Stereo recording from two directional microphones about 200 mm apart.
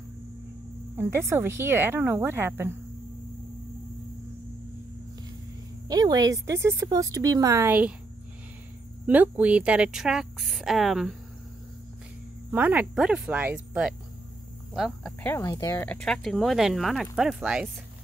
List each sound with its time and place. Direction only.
0.9 s speech: 10° right (ahead or behind)
5.9 s speech: 20° right (ahead or behind)
9.0 s speech: 5° right (ahead or behind)
12.4 s speech: 10° right (ahead or behind)
14.7 s cricket: centre (ahead or behind)
15.2 s speech: 15° left (ahead or behind); by 17.6 s 5° right (ahead or behind)